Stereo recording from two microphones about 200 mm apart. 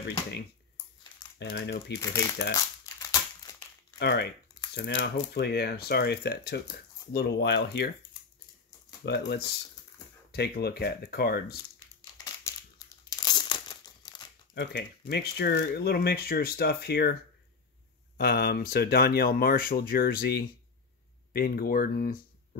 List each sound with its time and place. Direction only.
1.4 s speech: 55° left (ahead or behind)
2.0 s speech: 15° left (ahead or behind)
3.0 s crumpling: 15° left (ahead or behind)
4.0 s speech: 55° left (ahead or behind)
9.0 s speech: 55° left (ahead or behind)
12.0 s crumpling: 20° left (ahead or behind)
14.5 s speech: 60° left (ahead or behind)